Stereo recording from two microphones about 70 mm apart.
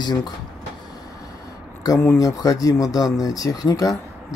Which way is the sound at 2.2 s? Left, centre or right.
Left.